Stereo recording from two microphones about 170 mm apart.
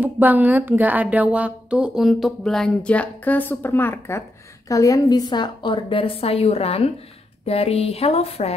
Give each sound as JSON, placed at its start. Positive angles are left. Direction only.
{"t": 0.0, "sound": "a woman's voice", "side_deg": -10}